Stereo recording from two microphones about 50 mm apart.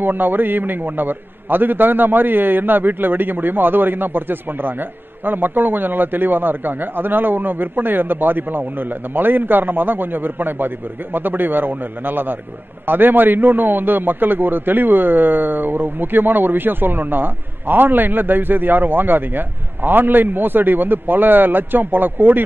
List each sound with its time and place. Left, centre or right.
0.0 s a man's voice: right